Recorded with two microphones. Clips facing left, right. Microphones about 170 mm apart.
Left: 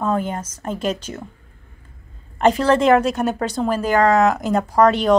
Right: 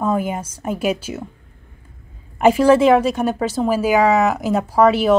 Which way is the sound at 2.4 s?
10° right (ahead or behind).